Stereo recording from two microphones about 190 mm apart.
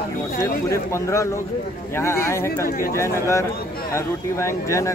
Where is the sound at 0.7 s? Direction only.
15° left (ahead or behind).